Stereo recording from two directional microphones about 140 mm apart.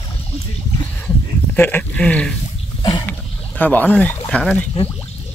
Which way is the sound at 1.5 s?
15° left (ahead or behind).